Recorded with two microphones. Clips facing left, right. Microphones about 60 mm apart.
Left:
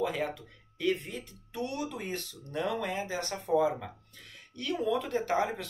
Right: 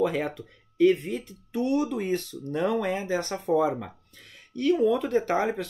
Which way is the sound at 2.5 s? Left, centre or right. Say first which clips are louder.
Right 6 dB; right.